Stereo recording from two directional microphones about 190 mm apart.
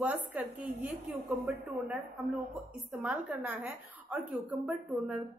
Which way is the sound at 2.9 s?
5° right (ahead or behind).